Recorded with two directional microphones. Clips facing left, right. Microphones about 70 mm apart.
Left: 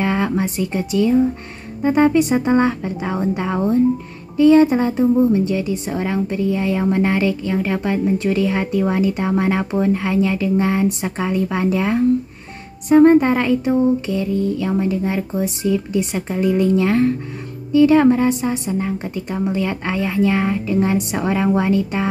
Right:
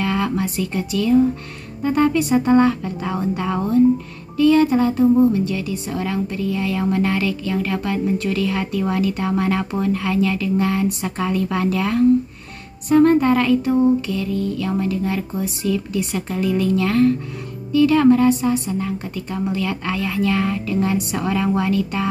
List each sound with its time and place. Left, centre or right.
0.0 s a woman's voice: left